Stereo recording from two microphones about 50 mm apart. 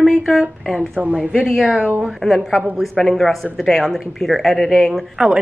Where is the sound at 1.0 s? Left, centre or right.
Left.